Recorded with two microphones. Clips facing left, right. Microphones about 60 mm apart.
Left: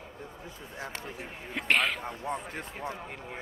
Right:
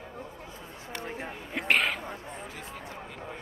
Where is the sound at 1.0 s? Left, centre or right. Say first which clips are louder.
Right 4 dB; right.